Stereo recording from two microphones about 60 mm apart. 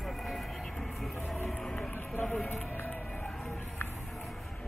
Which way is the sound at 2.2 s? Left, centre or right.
Centre.